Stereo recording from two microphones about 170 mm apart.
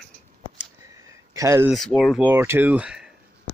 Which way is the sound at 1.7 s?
5° left (ahead or behind).